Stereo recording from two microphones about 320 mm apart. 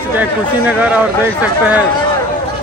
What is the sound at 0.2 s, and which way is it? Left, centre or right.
Speech, centre.